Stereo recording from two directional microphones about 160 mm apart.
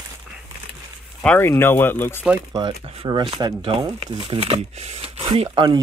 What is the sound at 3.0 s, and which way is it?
Speech, 30° right (ahead or behind).